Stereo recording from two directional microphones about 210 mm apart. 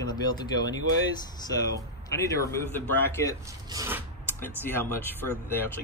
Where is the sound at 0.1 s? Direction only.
20° left (ahead or behind).